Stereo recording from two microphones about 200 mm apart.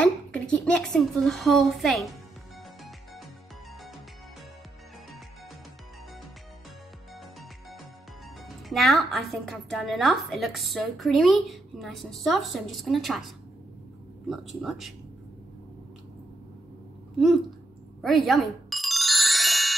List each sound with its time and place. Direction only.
0.0 s a woman's voice: 5° left (ahead or behind)
8.4 s a woman's voice: centre (ahead or behind)
14.3 s a woman's voice: centre (ahead or behind)
18.0 s music: centre (ahead or behind)